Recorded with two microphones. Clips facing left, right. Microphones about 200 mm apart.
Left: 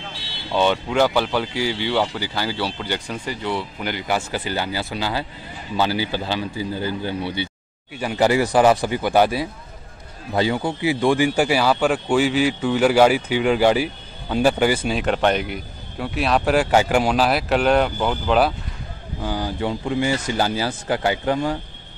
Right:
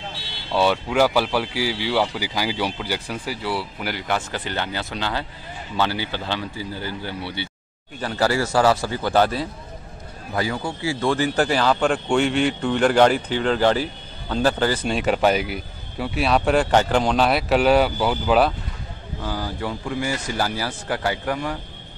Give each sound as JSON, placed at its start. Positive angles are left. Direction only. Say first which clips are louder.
{"t": 0.6, "sound": "speech", "louder": "even", "side_deg": -5}
{"t": 4.1, "sound": "speech", "louder": "left 3 dB", "side_deg": 5}
{"t": 10.3, "sound": "speech", "louder": "left 4 dB", "side_deg": 25}
{"t": 19.2, "sound": "speech", "louder": "left 3 dB", "side_deg": 20}